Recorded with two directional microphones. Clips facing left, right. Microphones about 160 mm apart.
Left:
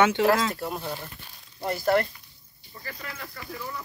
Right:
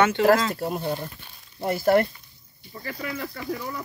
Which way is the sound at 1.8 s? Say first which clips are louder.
Right 4 dB; 50° right (ahead or behind).